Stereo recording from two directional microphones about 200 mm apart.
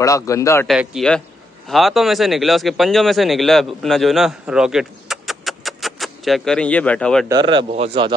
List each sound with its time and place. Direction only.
0.0 s a man's voice: 15° left (ahead or behind)
0.7 s speech: centre (ahead or behind)
7.2 s a man's voice: 20° right (ahead or behind)